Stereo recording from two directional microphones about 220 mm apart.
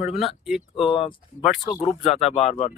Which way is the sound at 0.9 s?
25° left (ahead or behind).